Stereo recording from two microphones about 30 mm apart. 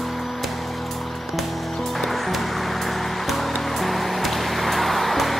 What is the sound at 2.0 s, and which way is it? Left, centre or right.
Music, centre.